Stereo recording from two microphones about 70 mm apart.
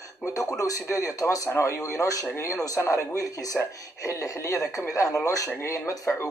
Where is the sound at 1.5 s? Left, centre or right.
Left.